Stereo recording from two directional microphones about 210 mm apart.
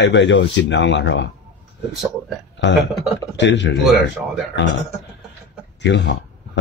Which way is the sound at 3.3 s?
60° left (ahead or behind).